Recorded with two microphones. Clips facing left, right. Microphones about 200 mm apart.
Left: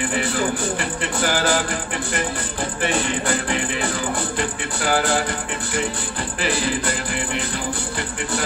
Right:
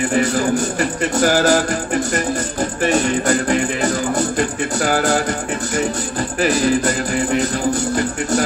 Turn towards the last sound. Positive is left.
turn(degrees=-40)  # may be behind; listen again after turning